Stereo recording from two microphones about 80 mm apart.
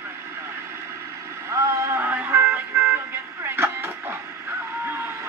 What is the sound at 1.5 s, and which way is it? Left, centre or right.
Vehicle, right.